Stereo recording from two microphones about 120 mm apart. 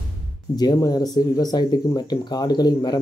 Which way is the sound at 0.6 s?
35° left (ahead or behind).